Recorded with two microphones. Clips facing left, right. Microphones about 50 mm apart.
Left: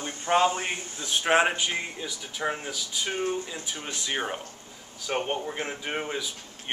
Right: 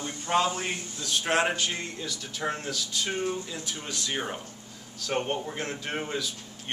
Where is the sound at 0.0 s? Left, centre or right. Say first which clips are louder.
Left 3 dB; left.